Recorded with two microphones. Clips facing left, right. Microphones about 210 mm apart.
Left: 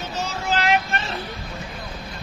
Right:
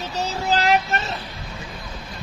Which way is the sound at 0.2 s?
35° right (ahead or behind).